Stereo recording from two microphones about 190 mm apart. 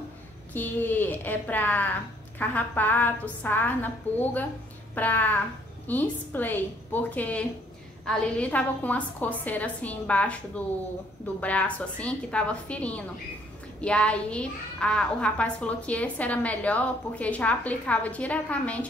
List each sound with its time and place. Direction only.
0.5 s a child's voice: 10° left (ahead or behind)
11.4 s a child's voice: 5° left (ahead or behind)